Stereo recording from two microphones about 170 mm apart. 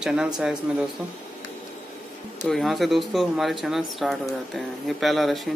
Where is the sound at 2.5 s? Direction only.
Centre (ahead or behind).